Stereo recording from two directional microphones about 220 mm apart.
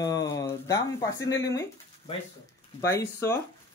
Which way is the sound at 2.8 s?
15° left (ahead or behind).